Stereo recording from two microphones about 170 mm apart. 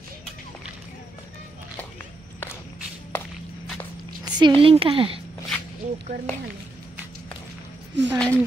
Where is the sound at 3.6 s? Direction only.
5° left (ahead or behind).